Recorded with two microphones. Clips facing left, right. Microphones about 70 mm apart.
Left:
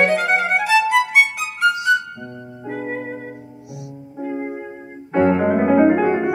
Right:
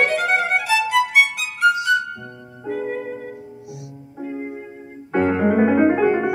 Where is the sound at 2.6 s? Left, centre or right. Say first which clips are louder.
Right 1 dB; left.